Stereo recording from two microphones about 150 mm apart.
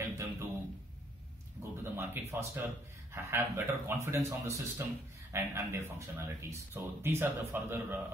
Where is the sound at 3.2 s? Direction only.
20° right (ahead or behind).